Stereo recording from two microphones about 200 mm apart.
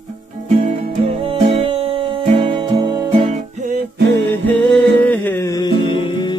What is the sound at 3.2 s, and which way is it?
Music, 40° right (ahead or behind).